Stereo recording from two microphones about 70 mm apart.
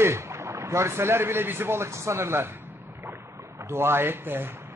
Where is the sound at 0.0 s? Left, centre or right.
Right.